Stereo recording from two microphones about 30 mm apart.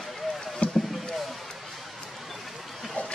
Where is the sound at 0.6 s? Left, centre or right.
Left.